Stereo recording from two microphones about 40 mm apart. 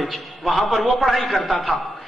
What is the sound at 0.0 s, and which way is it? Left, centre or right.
A man's voice, centre.